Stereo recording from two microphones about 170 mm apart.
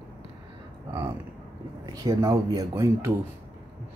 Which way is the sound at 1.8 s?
20° right (ahead or behind).